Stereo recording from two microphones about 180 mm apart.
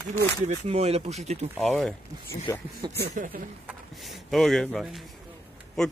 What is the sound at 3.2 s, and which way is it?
Speech, 45° right (ahead or behind).